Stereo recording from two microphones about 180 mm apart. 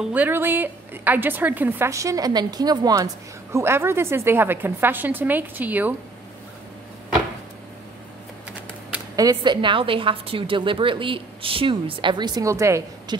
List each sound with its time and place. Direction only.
0.0 s a woman's voice: 10° right (ahead or behind)
9.1 s a woman's voice: 20° right (ahead or behind)